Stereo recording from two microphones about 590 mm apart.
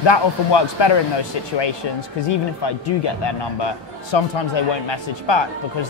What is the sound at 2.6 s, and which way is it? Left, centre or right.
Speech, left.